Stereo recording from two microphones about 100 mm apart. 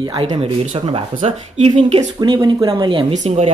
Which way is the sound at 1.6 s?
90° right.